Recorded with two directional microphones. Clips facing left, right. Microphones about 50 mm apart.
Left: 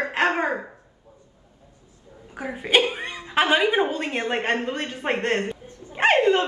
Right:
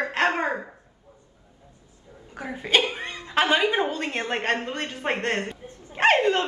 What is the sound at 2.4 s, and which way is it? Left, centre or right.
Child singing, centre.